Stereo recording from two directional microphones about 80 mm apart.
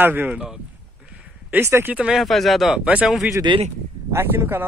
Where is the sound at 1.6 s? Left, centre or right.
Right.